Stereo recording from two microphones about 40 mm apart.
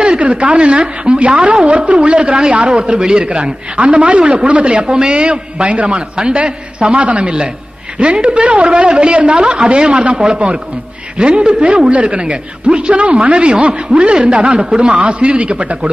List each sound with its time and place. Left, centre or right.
0.2 s a woman's voice: right
3.7 s a man's voice: right